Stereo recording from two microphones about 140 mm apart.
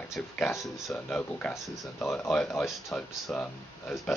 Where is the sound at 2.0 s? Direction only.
15° left (ahead or behind).